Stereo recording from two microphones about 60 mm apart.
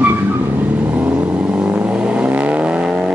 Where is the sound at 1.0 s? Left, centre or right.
Centre.